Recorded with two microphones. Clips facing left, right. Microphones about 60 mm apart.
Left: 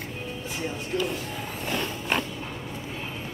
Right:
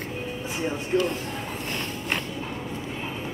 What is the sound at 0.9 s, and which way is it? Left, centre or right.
Speech, right.